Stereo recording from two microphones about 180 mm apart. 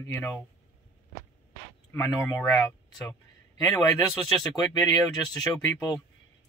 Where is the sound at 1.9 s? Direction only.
15° left (ahead or behind).